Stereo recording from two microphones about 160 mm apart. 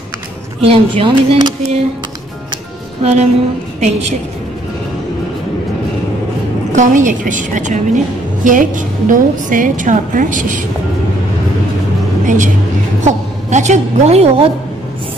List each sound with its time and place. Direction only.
0.6 s speech: 35° right (ahead or behind)
3.0 s speech: 45° right (ahead or behind)
6.7 s a woman's voice: 50° right (ahead or behind)
13.0 s a woman's voice: 45° right (ahead or behind)